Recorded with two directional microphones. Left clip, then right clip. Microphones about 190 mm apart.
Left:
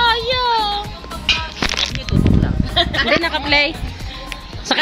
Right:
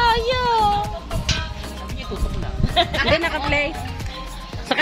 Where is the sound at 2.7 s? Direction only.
50° left (ahead or behind).